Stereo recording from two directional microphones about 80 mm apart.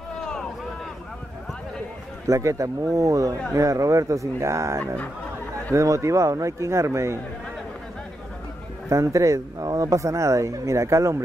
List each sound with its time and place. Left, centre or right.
0.2 s a sound: centre
2.2 s speech: right
8.8 s speech: right